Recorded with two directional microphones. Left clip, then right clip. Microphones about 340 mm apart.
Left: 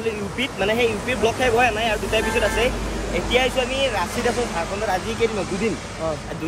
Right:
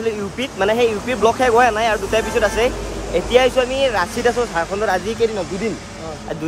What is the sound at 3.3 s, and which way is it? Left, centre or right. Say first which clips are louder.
Speech: right 6 dB; centre.